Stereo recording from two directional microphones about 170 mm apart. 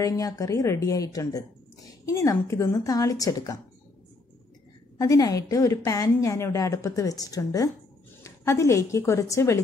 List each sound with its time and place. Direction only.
0.0 s a woman's voice: 20° left (ahead or behind)
4.9 s a woman's voice: 20° left (ahead or behind)